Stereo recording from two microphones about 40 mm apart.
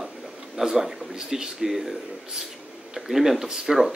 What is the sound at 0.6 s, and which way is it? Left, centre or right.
Speech, centre.